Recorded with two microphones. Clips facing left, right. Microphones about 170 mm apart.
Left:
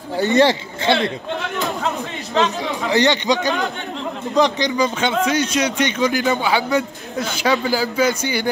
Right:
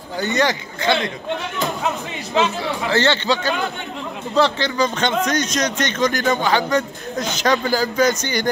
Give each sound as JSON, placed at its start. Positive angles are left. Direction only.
{"t": 0.2, "sound": "speech", "side_deg": 30}
{"t": 2.6, "sound": "speech", "side_deg": 15}